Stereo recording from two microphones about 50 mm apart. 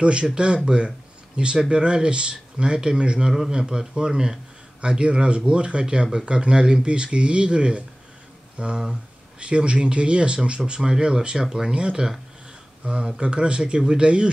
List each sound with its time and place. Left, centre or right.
0.0 s speech: centre